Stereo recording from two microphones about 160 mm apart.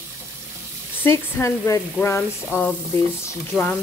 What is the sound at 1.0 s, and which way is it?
Speech, 15° left (ahead or behind).